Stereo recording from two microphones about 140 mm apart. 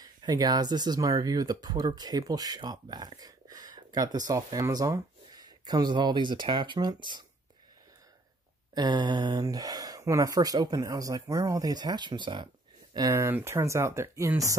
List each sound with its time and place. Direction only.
0.0 s speech: 30° right (ahead or behind)
8.7 s speech: 30° right (ahead or behind)
13.1 s speech: 15° right (ahead or behind)